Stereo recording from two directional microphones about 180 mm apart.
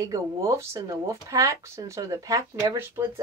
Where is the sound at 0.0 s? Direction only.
20° right (ahead or behind).